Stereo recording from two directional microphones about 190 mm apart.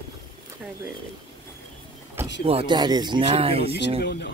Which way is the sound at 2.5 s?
25° right (ahead or behind).